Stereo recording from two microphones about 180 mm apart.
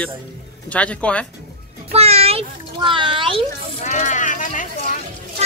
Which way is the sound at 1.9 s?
35° right (ahead or behind).